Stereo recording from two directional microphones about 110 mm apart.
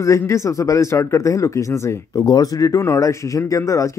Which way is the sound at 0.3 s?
30° left (ahead or behind).